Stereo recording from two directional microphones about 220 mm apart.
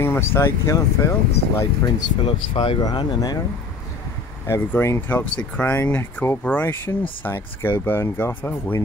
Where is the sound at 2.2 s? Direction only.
25° left (ahead or behind).